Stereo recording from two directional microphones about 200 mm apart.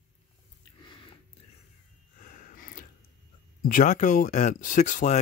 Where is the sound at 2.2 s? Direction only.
40° left (ahead or behind).